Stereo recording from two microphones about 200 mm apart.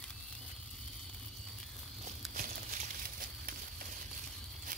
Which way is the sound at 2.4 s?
40° right (ahead or behind).